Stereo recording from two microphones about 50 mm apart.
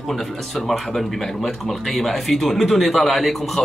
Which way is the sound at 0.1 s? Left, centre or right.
Centre.